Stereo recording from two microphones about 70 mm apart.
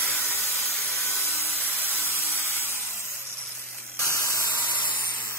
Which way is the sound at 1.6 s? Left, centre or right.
Left.